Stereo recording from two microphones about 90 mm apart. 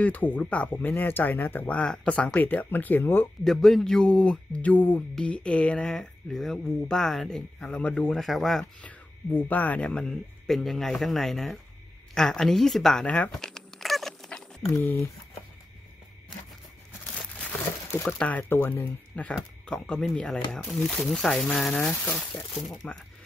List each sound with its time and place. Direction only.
0.0 s speech: 20° left (ahead or behind)
3.4 s speech: 5° left (ahead or behind)
8.8 s speech: 15° left (ahead or behind)
12.1 s a sound: 5° left (ahead or behind)
14.7 s speech: 25° left (ahead or behind)
18.0 s speech: 10° left (ahead or behind)
18.5 s speech: 25° left (ahead or behind); by 22.8 s centre (ahead or behind)